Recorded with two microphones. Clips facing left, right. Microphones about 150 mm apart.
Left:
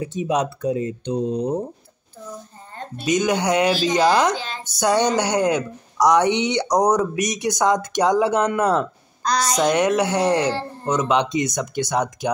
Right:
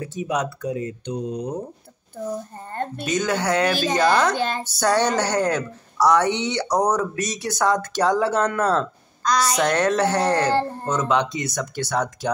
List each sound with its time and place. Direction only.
0.0 s speech: 20° left (ahead or behind)
2.7 s a sound: 55° right (ahead or behind)
3.1 s speech: 15° left (ahead or behind)
4.4 s speech: 55° right (ahead or behind)
4.6 s speech: 15° left (ahead or behind)
9.2 s a woman's voice: 35° left (ahead or behind)
9.6 s speech: 15° left (ahead or behind)